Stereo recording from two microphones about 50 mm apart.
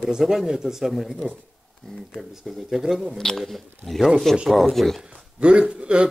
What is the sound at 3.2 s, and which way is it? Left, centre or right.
A man's voice, centre.